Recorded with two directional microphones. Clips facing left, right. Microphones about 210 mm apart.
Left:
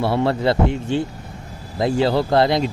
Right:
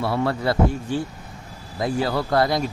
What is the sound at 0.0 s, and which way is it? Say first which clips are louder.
Speech: left 4 dB; 30° left (ahead or behind).